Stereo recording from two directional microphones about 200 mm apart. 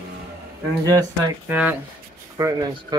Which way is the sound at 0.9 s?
15° right (ahead or behind).